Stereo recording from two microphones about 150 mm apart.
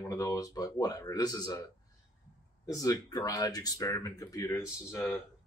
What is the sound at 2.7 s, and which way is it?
Speech, 20° left (ahead or behind).